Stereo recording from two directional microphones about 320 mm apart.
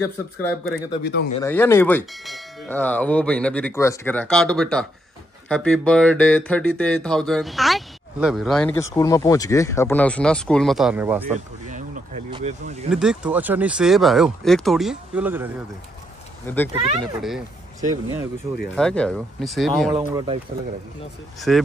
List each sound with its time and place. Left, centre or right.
0.0 s bell: centre
11.2 s a sound: right
12.9 s bell: centre
16.5 s speech: centre
17.0 s bell: centre
17.7 s speech: centre
18.8 s bell: centre
20.0 s speech: centre
21.4 s bell: centre